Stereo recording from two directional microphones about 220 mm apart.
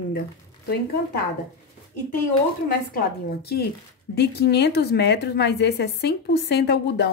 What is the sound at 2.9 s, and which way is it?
A woman's voice, 45° left (ahead or behind).